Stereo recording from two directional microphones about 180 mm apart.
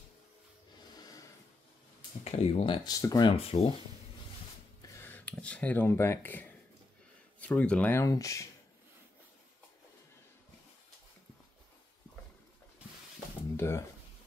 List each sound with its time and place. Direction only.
0.9 s a sound: 20° left (ahead or behind)
2.2 s speech: 35° left (ahead or behind)
4.9 s speech: 10° left (ahead or behind)
13.6 s speech: 15° left (ahead or behind)